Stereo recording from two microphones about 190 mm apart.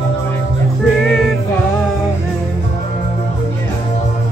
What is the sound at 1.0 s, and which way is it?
Music, 5° left (ahead or behind).